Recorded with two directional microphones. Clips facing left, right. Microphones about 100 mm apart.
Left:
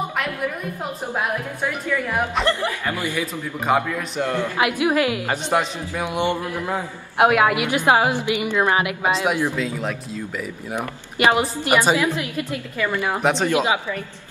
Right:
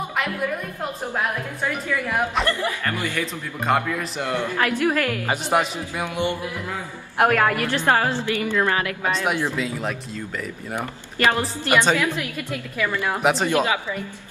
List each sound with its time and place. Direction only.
2.4 s speech: centre (ahead or behind)
2.8 s a woman's voice: 15° left (ahead or behind)
3.7 s speech: 5° left (ahead or behind)
4.2 s a man's voice: 10° right (ahead or behind)
4.6 s a woman's voice: 10° left (ahead or behind)
5.3 s a man's voice: 10° right (ahead or behind)
6.0 s music: 20° left (ahead or behind)
7.2 s a woman's voice: 10° left (ahead or behind)
9.1 s speech: 5° left (ahead or behind)
10.8 s a woman's voice: 15° left (ahead or behind)
13.2 s speech: centre (ahead or behind)